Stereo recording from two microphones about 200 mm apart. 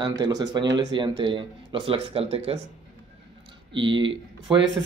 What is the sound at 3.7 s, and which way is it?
Speech, 25° right (ahead or behind).